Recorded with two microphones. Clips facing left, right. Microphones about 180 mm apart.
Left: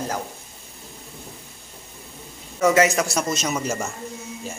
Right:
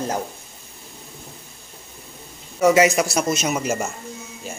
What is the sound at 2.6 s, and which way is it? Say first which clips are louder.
A man's voice: right 2 dB; 15° right (ahead or behind).